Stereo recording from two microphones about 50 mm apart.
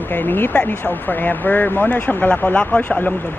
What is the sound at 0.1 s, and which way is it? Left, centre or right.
Speech, left.